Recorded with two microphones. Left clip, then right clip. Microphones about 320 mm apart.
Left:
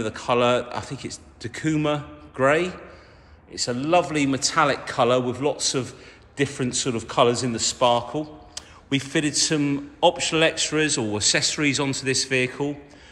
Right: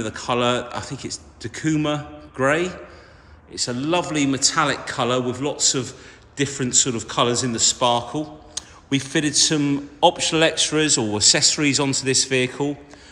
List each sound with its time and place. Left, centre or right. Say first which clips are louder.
0.0 s a man's voice: left 1 dB; centre